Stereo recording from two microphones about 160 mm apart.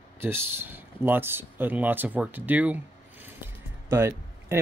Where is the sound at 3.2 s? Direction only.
15° right (ahead or behind).